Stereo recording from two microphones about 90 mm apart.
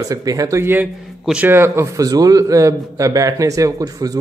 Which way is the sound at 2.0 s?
45° right (ahead or behind).